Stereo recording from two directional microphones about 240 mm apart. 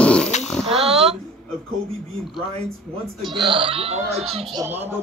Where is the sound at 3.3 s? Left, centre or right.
Centre.